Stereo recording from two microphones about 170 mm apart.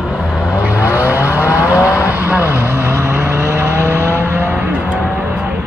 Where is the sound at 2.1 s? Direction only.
10° right (ahead or behind).